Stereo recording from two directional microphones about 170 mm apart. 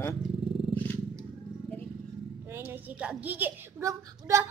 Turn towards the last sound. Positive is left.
turn(degrees=-20)  # may be behind; listen again after turning